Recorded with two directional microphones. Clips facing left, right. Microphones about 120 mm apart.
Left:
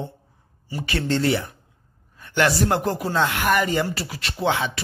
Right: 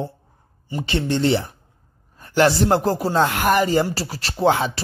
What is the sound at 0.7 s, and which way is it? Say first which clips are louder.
Speech: right 2 dB; 25° right (ahead or behind).